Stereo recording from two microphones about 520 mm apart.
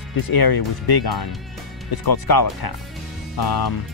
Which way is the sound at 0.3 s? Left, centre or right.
Left.